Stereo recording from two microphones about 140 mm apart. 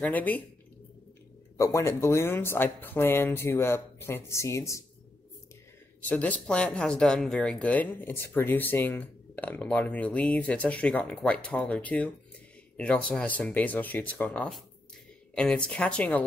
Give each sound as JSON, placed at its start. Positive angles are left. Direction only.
{"t": 0.0, "sound": "speech", "side_deg": 10}
{"t": 1.6, "sound": "speech", "side_deg": 20}
{"t": 6.0, "sound": "speech", "side_deg": 10}